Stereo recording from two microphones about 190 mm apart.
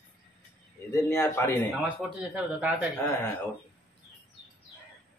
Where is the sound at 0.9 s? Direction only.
15° left (ahead or behind).